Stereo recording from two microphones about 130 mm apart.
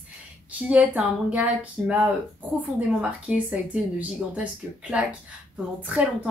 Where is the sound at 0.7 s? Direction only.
10° right (ahead or behind).